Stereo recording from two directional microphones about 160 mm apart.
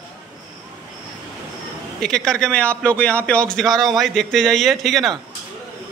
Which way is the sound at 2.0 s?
5° left (ahead or behind).